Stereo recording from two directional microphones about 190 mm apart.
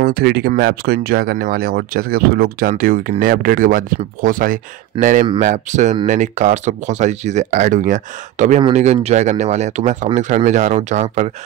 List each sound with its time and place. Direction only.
0.0 s speech: 55° right (ahead or behind)
4.9 s speech: 25° right (ahead or behind)
5.4 s speech: 40° right (ahead or behind)